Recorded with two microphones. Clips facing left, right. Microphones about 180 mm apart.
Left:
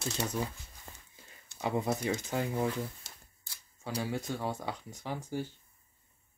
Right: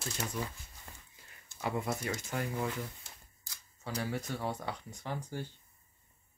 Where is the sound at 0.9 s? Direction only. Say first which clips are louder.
Left 2 dB; 25° left (ahead or behind).